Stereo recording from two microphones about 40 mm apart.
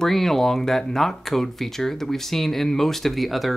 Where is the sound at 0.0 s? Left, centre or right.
Centre.